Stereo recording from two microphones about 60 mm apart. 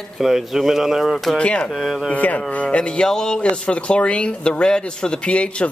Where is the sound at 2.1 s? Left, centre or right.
Left.